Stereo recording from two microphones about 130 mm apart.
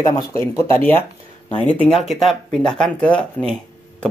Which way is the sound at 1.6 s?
10° left (ahead or behind).